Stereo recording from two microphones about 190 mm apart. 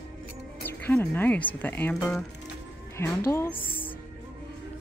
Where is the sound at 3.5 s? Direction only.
25° left (ahead or behind).